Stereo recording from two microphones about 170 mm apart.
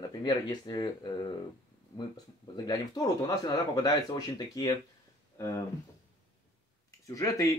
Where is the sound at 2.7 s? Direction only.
25° left (ahead or behind).